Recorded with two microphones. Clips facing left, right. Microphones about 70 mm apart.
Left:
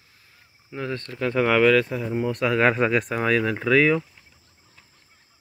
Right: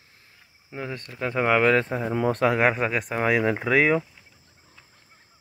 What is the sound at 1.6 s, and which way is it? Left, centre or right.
Speech, right.